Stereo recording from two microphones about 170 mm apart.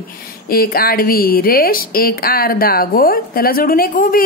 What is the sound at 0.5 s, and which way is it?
Speech, 60° left (ahead or behind).